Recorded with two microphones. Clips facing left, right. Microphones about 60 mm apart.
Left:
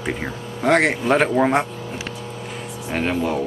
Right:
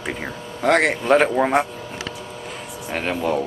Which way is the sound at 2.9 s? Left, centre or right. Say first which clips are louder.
Left 1 dB; centre.